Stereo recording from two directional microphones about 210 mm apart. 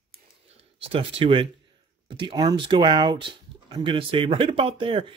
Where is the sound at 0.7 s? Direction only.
25° right (ahead or behind).